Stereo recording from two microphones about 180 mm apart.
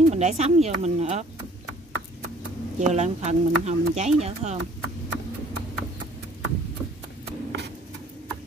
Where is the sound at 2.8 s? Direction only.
40° right (ahead or behind).